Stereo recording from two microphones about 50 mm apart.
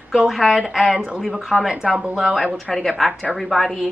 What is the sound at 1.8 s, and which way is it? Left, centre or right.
Speech, right.